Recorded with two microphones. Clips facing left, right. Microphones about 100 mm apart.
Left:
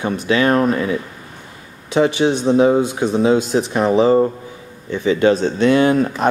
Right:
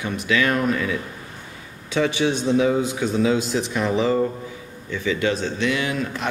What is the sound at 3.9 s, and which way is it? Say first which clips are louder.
Speech: left 8 dB; 30° left (ahead or behind).